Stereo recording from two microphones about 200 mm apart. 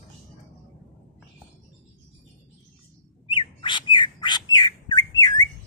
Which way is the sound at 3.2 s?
25° left (ahead or behind).